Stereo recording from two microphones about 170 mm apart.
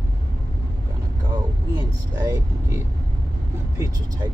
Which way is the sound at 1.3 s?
25° right (ahead or behind).